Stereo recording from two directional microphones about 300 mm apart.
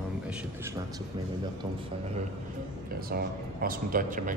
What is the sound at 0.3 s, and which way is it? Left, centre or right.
Speech, centre.